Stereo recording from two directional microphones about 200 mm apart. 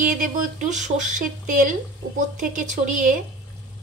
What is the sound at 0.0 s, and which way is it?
Speech, 40° right (ahead or behind).